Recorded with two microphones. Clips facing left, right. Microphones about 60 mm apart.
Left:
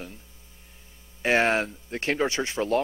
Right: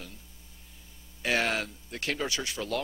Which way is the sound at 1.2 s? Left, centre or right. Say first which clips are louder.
Left 6 dB; left.